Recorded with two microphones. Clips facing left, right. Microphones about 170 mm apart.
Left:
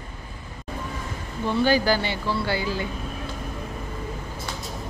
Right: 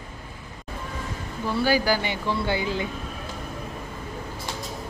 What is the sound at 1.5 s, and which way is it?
Speech, 10° right (ahead or behind).